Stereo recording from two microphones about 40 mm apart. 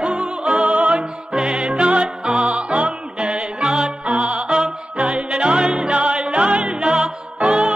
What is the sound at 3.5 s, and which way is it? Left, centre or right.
Music, centre.